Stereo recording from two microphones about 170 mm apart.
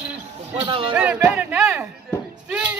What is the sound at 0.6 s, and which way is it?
Speech, 30° right (ahead or behind).